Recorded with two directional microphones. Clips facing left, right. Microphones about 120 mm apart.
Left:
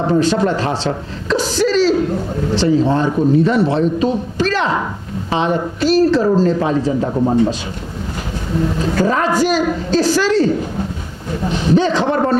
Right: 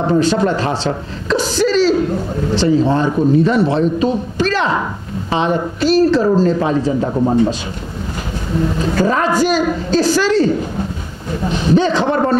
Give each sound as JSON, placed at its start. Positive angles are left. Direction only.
{"t": 0.0, "sound": "a man's voice", "side_deg": -25}
{"t": 8.9, "sound": "a man's voice", "side_deg": -25}
{"t": 11.7, "sound": "a man's voice", "side_deg": -25}